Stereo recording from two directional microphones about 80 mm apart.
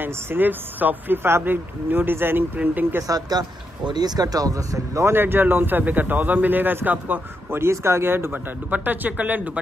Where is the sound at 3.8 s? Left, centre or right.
Right.